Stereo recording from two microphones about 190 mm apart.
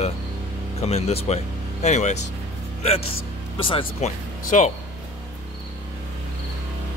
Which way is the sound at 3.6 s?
30° left (ahead or behind).